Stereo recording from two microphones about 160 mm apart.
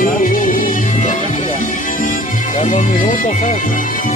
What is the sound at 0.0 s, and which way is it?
Music, 60° left (ahead or behind).